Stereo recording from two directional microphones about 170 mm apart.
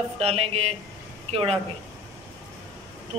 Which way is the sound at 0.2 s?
35° right (ahead or behind).